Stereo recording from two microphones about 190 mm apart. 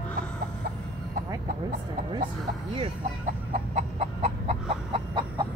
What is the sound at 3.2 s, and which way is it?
Chicken, 40° right (ahead or behind).